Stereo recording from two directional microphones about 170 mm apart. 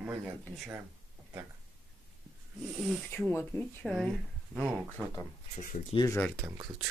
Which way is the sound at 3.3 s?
15° left (ahead or behind).